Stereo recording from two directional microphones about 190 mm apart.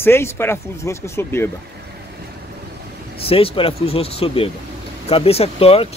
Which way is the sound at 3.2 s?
30° left (ahead or behind).